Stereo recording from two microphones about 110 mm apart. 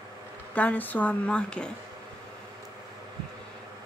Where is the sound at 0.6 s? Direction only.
15° left (ahead or behind).